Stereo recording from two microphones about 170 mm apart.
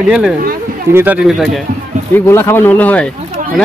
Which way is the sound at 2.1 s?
15° left (ahead or behind).